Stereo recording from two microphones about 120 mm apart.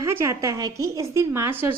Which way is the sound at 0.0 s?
25° right (ahead or behind).